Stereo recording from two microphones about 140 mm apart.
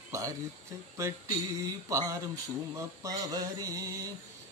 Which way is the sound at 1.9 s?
25° right (ahead or behind).